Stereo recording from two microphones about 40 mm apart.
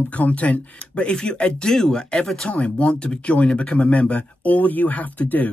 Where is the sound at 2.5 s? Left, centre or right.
Left.